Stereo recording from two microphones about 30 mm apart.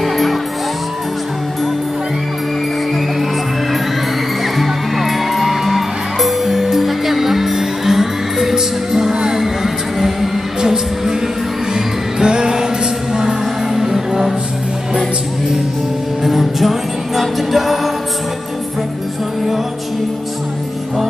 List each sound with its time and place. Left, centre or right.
0.0 s music: centre
4.6 s music: centre
9.1 s music: right
9.4 s music: centre
10.6 s music: centre
16.3 s music: centre